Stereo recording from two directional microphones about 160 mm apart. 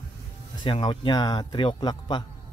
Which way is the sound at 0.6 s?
30° left (ahead or behind).